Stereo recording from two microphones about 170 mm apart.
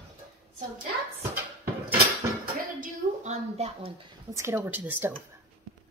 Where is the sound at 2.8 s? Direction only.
45° right (ahead or behind).